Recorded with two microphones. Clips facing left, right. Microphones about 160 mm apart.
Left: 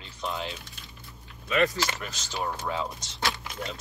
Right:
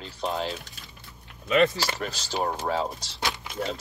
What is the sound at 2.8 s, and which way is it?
Speech, 25° right (ahead or behind).